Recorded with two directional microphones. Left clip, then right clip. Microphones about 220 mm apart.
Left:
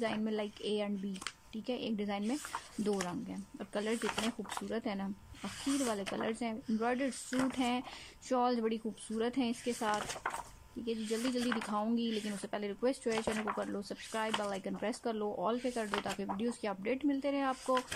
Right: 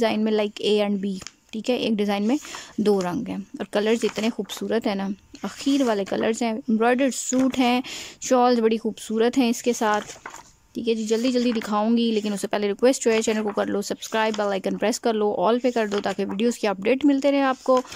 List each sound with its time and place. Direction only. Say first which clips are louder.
0.0 s speech: right 14 dB; 50° right (ahead or behind)